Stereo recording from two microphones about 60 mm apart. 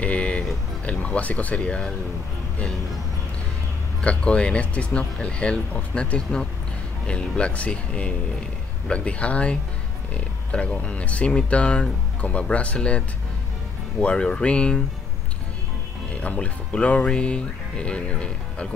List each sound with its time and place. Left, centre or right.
0.0 s music: left
0.8 s speech: left
4.0 s speech: centre
16.2 s speech: left